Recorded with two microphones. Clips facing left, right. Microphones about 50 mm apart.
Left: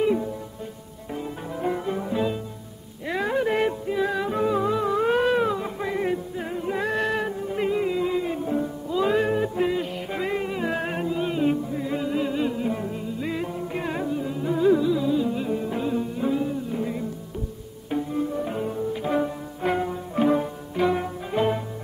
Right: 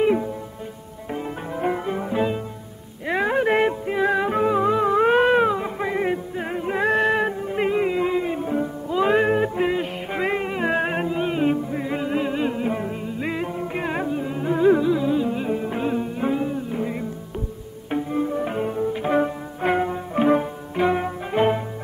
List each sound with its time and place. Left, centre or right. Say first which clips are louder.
1.1 s music: right 3 dB; right
3.4 s music: right 4 dB; right
5.5 s music: right 3 dB; right
8.1 s music: right 2 dB; right
8.5 s music: right 4 dB; right
10.2 s a sound: right 4 dB; right
11.7 s music: right 2 dB; right
12.8 s music: right 2 dB; right
13.4 s music: right 3 dB; right
16.4 s music: right 2 dB; right
17.9 s bowed string instrument: right 3 dB; right
18.4 s music: right 3 dB; right